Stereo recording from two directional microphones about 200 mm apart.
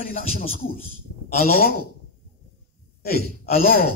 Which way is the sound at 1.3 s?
45° left (ahead or behind).